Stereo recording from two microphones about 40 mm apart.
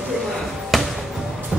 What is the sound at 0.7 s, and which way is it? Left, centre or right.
Music, centre.